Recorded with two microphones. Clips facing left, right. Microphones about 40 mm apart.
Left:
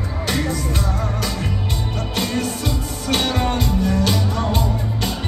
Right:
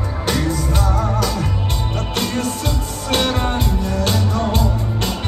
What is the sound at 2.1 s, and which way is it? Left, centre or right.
Music, right.